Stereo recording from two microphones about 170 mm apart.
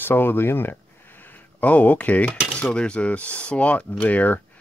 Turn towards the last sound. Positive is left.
turn(degrees=10)  # may be behind; listen again after turning